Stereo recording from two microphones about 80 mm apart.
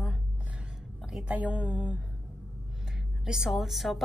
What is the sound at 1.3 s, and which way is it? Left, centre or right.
Speech, centre.